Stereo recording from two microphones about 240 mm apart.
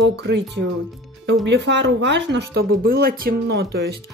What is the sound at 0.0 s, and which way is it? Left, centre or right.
Speech, right.